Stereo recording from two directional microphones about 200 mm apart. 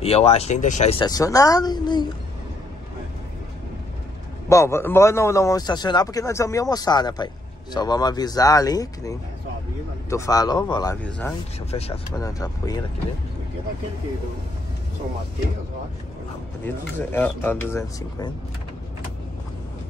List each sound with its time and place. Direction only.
0.0 s speech: 30° left (ahead or behind)
4.5 s a man's voice: 15° left (ahead or behind)
11.1 s speech: 5° left (ahead or behind)
11.7 s speech: 30° left (ahead or behind)
12.2 s a man's voice: 15° left (ahead or behind)
16.6 s a man's voice: 10° left (ahead or behind)